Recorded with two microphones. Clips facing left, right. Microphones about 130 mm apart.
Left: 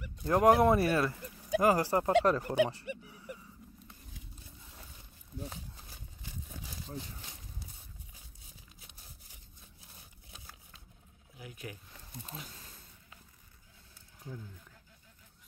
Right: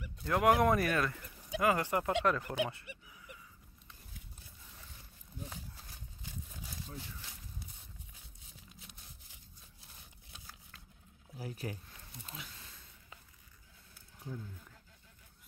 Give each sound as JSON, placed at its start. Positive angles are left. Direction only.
{"t": 0.2, "sound": "speech", "side_deg": 35}
{"t": 3.1, "sound": "a sound", "side_deg": 30}
{"t": 11.3, "sound": "speech", "side_deg": -35}
{"t": 12.3, "sound": "speech", "side_deg": 40}